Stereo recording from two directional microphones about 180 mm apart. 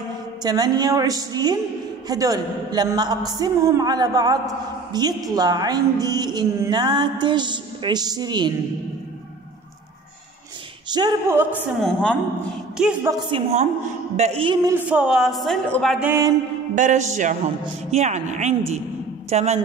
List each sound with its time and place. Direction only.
0.4 s a woman's voice: 20° right (ahead or behind)
10.9 s a woman's voice: 25° right (ahead or behind)
11.5 s speech: 5° left (ahead or behind)
13.3 s speech: 35° right (ahead or behind)
14.7 s speech: 5° right (ahead or behind)
16.1 s music: 15° right (ahead or behind)
16.7 s music: 45° right (ahead or behind)
17.9 s a woman's voice: 40° right (ahead or behind)